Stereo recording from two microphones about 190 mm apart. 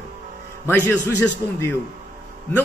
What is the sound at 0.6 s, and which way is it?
Speech, 10° left (ahead or behind).